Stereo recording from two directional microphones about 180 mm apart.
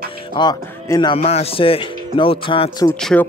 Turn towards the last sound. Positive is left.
turn(degrees=5)  # may be behind; listen again after turning